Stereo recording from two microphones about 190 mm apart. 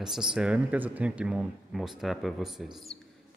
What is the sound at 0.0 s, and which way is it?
Speech, 5° right (ahead or behind).